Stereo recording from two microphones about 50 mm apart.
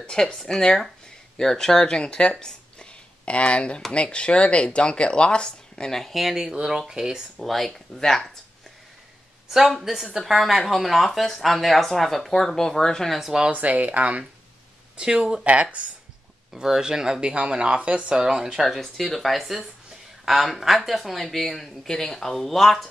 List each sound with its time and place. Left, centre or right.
0.0 s speech: centre
6.1 s speech: centre
7.3 s speech: centre
9.5 s speech: centre
13.2 s speech: centre
13.5 s speech: right
15.0 s speech: centre
15.4 s speech: right
16.5 s speech: centre
18.8 s speech: centre